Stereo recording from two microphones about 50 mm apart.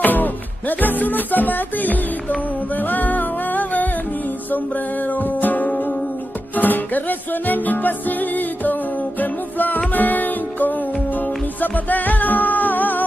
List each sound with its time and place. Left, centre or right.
0.0 s music: left
5.0 s music: left